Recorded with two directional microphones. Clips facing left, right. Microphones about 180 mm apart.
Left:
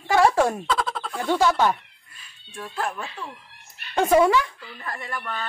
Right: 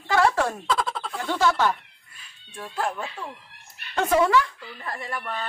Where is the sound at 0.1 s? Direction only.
15° left (ahead or behind).